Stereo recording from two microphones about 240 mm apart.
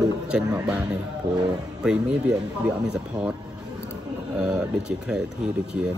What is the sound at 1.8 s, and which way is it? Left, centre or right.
Speech, centre.